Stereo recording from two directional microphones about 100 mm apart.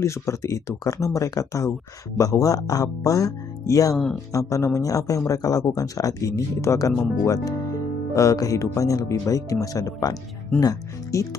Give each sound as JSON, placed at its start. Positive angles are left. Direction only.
{"t": 0.0, "sound": "speech", "side_deg": 30}
{"t": 3.9, "sound": "speech", "side_deg": 0}
{"t": 4.3, "sound": "speech", "side_deg": 35}
{"t": 8.1, "sound": "speech", "side_deg": 35}